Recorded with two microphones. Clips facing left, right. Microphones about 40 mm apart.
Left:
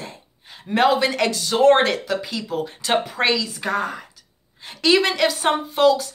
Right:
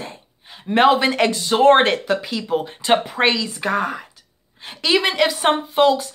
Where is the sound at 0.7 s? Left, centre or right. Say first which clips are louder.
Right 3 dB; right.